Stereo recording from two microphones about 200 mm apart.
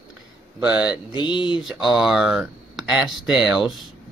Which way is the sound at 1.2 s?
25° left (ahead or behind).